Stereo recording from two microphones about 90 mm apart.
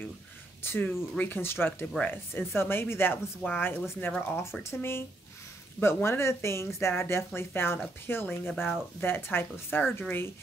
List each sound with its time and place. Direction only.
0.6 s speech: 25° left (ahead or behind)